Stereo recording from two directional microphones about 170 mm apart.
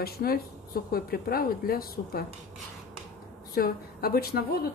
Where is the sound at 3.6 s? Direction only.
60° left (ahead or behind).